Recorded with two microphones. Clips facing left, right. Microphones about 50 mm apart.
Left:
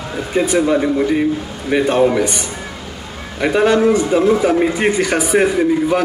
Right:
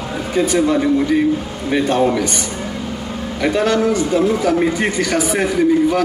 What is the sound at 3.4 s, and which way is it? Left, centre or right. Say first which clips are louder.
A man's voice: left 3 dB; centre.